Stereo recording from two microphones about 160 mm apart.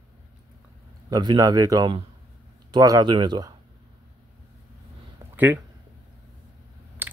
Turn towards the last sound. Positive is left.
turn(degrees=-10)  # may be behind; listen again after turning